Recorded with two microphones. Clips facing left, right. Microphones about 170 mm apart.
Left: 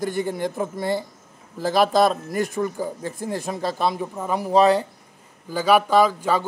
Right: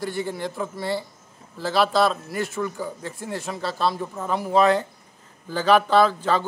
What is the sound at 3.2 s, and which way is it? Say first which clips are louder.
A man's voice: left 3 dB; 15° left (ahead or behind).